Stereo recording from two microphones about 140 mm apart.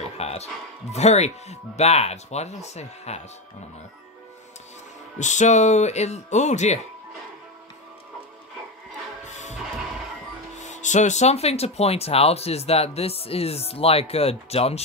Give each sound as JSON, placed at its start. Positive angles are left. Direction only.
{"t": 0.2, "sound": "speech", "side_deg": 50}
{"t": 5.2, "sound": "speech", "side_deg": 60}
{"t": 9.2, "sound": "music", "side_deg": 60}
{"t": 10.6, "sound": "speech", "side_deg": 60}